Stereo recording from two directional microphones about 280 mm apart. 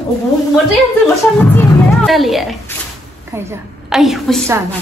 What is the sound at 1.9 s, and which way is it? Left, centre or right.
A woman's voice, centre.